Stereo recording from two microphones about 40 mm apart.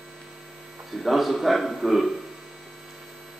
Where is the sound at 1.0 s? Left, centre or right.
Centre.